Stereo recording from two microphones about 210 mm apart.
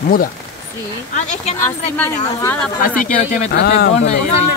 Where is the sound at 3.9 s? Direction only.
30° left (ahead or behind).